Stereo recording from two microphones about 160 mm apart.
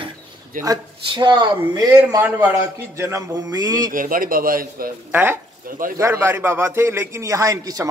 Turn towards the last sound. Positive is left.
turn(degrees=-20)  # may be behind; listen again after turning